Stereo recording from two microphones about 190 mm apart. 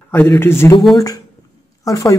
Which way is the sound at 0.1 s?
10° left (ahead or behind).